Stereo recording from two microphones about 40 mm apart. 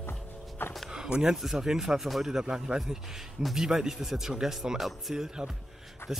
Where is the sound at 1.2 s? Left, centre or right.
Centre.